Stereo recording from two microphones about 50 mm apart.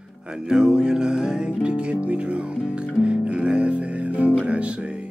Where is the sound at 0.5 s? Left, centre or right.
Centre.